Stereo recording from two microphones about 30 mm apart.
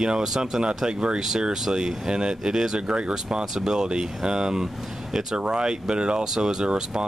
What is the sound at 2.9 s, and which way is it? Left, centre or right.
Speech, right.